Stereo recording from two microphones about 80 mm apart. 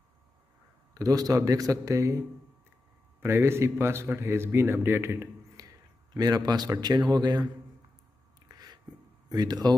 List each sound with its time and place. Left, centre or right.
0.9 s speech: right
3.2 s speech: right
5.6 s a sound: right
6.1 s a man's voice: right
8.5 s a sound: right
9.3 s a man's voice: right